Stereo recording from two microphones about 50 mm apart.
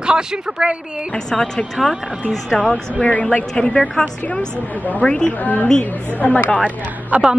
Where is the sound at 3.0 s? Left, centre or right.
Left.